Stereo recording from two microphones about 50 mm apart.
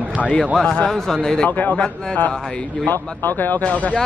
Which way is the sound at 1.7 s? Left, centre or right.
Centre.